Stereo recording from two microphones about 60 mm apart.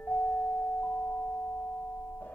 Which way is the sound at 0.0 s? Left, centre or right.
Centre.